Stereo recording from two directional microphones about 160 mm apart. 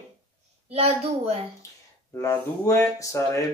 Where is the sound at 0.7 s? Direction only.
40° right (ahead or behind).